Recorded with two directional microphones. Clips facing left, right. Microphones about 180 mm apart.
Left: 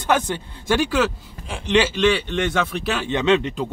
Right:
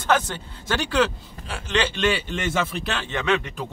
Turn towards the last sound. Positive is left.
turn(degrees=20)  # may be behind; listen again after turning